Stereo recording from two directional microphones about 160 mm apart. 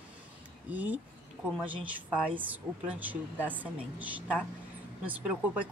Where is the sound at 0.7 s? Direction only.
10° right (ahead or behind).